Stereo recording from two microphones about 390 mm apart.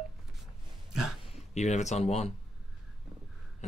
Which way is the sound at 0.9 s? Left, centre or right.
Right.